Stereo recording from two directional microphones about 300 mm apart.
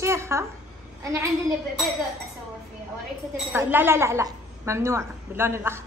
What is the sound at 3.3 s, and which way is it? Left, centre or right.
A woman's voice, centre.